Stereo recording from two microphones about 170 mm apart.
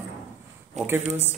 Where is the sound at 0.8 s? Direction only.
40° right (ahead or behind).